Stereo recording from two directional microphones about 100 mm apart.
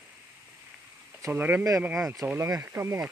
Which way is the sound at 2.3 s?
30° right (ahead or behind).